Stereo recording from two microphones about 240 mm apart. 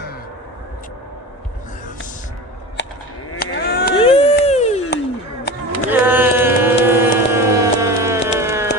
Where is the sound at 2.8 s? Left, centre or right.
Left.